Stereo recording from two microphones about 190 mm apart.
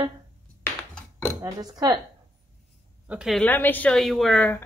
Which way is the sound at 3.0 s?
5° right (ahead or behind).